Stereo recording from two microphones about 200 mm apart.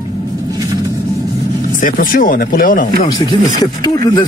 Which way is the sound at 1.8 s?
40° left (ahead or behind).